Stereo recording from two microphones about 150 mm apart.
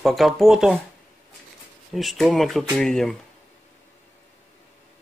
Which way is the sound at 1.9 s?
Centre (ahead or behind).